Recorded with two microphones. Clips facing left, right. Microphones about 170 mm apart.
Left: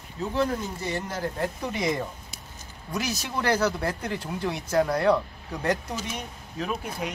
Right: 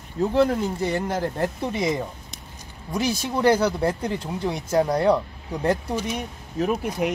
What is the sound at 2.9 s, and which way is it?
Speech, 25° right (ahead or behind).